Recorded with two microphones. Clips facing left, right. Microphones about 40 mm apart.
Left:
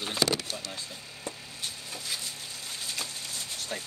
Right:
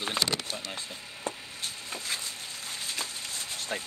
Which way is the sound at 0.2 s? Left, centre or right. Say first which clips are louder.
Left 3 dB; right.